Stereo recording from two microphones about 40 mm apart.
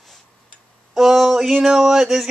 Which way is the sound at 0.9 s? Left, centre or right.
Centre.